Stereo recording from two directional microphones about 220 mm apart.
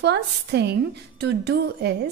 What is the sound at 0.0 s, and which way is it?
A woman's voice, 50° right (ahead or behind).